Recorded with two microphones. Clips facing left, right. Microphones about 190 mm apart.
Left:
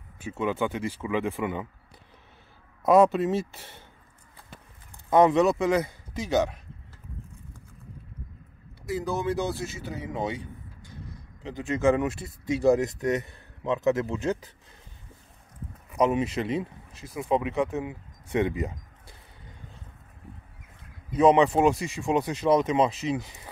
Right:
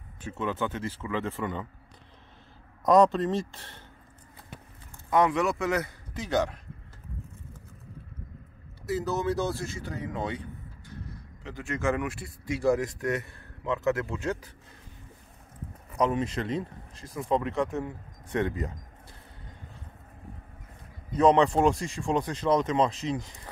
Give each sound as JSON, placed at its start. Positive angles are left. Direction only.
{"t": 0.2, "sound": "speech", "side_deg": 10}
{"t": 2.8, "sound": "speech", "side_deg": 5}
{"t": 5.1, "sound": "speech", "side_deg": 25}
{"t": 8.9, "sound": "speech", "side_deg": 15}
{"t": 11.4, "sound": "speech", "side_deg": 20}
{"t": 16.0, "sound": "speech", "side_deg": 15}
{"t": 21.1, "sound": "speech", "side_deg": 5}